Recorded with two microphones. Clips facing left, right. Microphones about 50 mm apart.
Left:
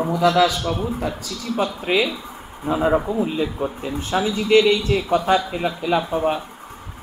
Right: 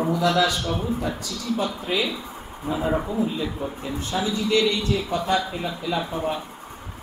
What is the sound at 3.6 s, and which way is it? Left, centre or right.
Speech, left.